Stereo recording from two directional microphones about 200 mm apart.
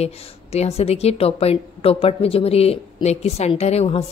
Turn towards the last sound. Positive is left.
turn(degrees=30)  # may be behind; listen again after turning